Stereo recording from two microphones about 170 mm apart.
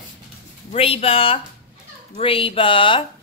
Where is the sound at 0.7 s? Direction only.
35° left (ahead or behind).